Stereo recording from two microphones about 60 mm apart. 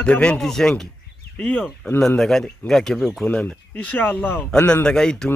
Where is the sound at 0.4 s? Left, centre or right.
Centre.